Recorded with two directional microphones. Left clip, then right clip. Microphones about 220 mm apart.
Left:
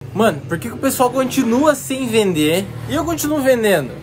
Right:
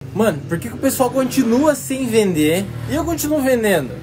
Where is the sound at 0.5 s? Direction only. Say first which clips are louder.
Even; 10° left (ahead or behind).